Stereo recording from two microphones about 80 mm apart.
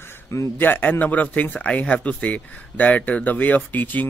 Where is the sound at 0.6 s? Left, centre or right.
Left.